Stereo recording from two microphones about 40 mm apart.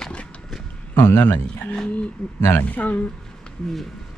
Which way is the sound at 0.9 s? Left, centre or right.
Left.